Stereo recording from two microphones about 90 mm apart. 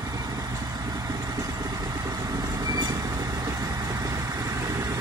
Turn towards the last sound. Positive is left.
turn(degrees=-40)  # may be behind; listen again after turning